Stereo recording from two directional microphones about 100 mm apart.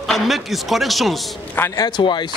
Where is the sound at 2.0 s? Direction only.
50° left (ahead or behind).